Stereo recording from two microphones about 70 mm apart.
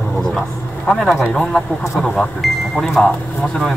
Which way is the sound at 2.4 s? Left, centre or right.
Centre.